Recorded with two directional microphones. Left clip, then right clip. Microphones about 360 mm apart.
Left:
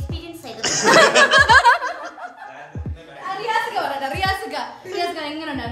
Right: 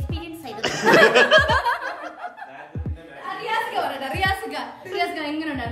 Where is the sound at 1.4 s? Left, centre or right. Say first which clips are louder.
Left 6 dB; left.